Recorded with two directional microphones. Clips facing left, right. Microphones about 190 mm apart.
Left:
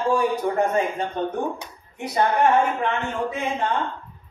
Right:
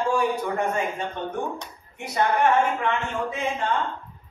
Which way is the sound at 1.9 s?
35° left (ahead or behind).